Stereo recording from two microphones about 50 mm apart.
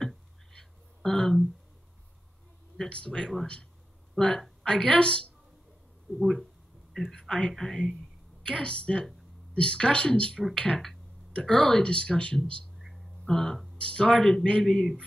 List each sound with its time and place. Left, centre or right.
0.5 s music: centre
2.9 s speech: left
6.9 s speech: centre
8.5 s speech: left
12.7 s a sound: centre
13.3 s speech: centre
13.7 s speech: left
14.2 s speech: centre